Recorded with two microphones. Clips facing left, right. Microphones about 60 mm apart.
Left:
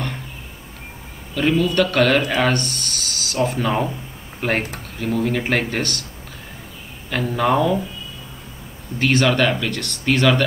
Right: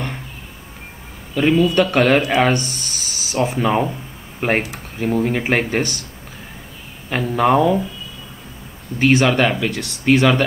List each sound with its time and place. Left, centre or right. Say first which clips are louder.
1.3 s a man's voice: right 3 dB; centre
7.3 s speech: right 3 dB; centre
9.0 s speech: right 2 dB; centre